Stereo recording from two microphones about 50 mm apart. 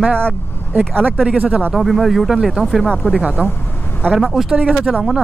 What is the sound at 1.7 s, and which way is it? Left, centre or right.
Speech, centre.